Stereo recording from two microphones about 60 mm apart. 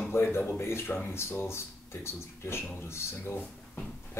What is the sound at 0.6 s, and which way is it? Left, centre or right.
Speech, left.